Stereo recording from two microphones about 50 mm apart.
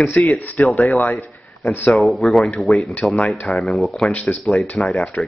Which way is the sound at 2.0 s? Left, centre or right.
Centre.